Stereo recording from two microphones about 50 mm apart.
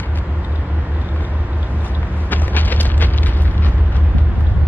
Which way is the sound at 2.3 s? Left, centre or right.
Left.